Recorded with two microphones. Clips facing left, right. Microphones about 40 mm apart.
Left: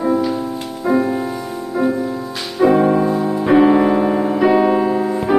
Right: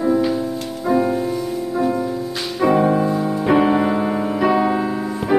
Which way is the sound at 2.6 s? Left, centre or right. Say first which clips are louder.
Left 3 dB; centre.